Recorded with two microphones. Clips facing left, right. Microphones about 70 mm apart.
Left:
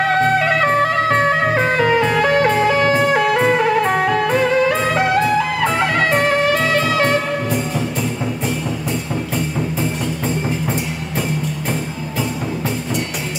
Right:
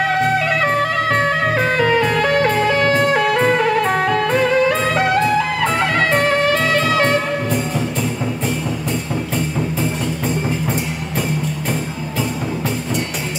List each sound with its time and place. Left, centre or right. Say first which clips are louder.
0.0 s music: left 2 dB; left; by 7.6 s centre